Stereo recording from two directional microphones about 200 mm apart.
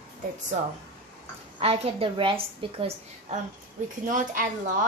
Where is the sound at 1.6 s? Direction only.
30° right (ahead or behind).